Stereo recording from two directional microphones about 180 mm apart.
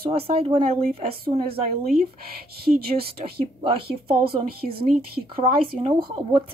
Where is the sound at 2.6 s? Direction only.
60° right (ahead or behind).